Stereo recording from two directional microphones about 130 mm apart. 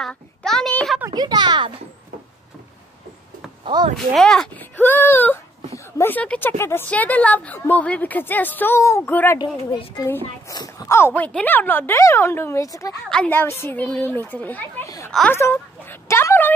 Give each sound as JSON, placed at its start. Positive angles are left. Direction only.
{"t": 0.0, "sound": "a sound", "side_deg": 5}
{"t": 1.1, "sound": "speech", "side_deg": -30}
{"t": 3.6, "sound": "speech", "side_deg": -40}
{"t": 3.9, "sound": "a woman's voice", "side_deg": 5}
{"t": 9.9, "sound": "speech", "side_deg": 25}
{"t": 13.1, "sound": "a woman's voice", "side_deg": 10}
{"t": 15.3, "sound": "a sound", "side_deg": 20}